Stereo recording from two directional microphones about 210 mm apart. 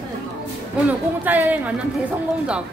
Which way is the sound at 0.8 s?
10° right (ahead or behind).